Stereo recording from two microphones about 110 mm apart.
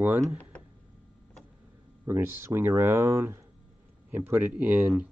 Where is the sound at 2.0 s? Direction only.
25° right (ahead or behind).